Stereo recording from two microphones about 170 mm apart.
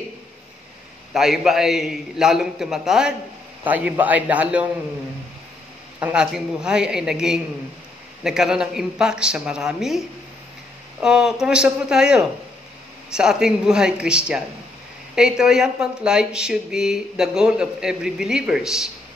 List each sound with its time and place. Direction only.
1.1 s a man's voice: centre (ahead or behind)
5.9 s speech: 5° right (ahead or behind)